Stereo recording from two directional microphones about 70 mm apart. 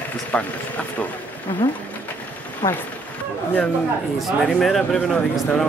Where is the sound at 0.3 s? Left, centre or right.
Centre.